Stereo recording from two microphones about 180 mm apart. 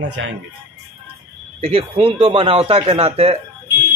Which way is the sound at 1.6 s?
35° right (ahead or behind).